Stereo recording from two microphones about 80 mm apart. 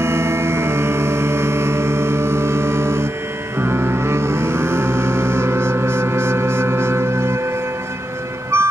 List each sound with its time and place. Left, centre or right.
0.0 s music: right
8.5 s music: right